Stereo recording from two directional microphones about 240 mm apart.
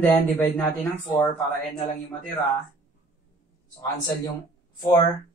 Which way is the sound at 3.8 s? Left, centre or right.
Centre.